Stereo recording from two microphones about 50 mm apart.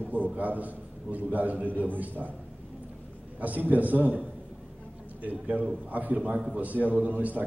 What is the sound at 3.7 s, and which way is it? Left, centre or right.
A man's voice, right.